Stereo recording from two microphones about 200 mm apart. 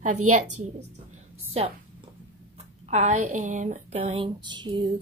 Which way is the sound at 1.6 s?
35° right (ahead or behind).